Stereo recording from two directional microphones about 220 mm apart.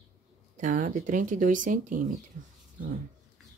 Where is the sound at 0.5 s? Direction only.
35° right (ahead or behind).